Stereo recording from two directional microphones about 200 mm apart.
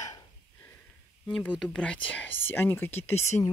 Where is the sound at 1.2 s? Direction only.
5° left (ahead or behind).